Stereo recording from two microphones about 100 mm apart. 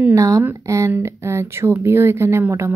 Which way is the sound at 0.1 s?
30° right (ahead or behind).